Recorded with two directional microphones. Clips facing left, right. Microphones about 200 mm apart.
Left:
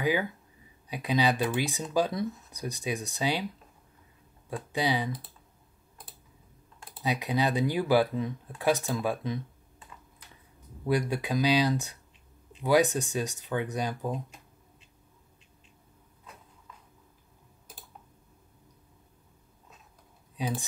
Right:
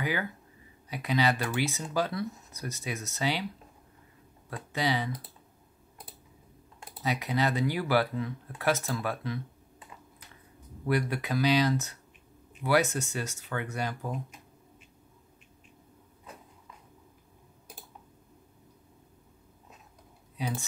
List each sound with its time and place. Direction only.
0.0 s speech: 15° left (ahead or behind)
4.7 s speech: 15° left (ahead or behind)
6.9 s speech: 15° left (ahead or behind)
10.9 s speech: 15° left (ahead or behind)
20.3 s speech: 15° left (ahead or behind)